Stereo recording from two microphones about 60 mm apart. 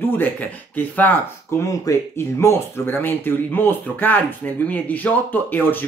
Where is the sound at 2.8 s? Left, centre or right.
Left.